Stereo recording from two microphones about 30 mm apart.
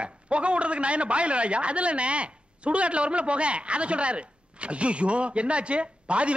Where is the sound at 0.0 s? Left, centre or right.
Right.